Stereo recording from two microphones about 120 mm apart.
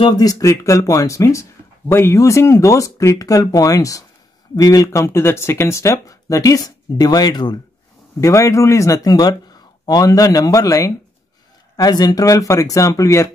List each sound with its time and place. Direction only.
0.2 s speech: 30° left (ahead or behind)